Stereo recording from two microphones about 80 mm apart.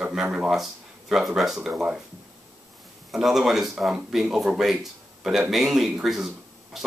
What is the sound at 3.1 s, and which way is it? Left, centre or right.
Speech, centre.